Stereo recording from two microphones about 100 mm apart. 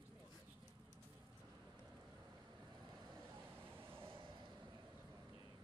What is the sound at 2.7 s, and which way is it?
Vehicle, 45° right (ahead or behind).